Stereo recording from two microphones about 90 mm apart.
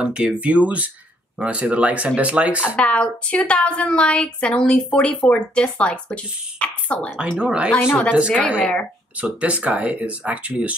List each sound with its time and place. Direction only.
0.0 s speech: 10° right (ahead or behind)
2.7 s a woman's voice: 10° left (ahead or behind)
7.2 s speech: 10° right (ahead or behind)
7.9 s a woman's voice: 15° left (ahead or behind)
9.2 s speech: 15° right (ahead or behind)